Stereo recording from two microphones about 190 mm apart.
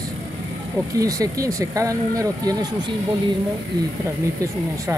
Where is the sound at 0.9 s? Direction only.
20° right (ahead or behind).